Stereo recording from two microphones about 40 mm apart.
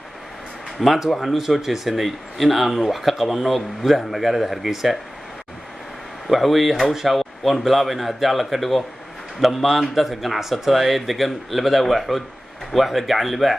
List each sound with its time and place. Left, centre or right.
0.7 s speech: centre
6.2 s speech: centre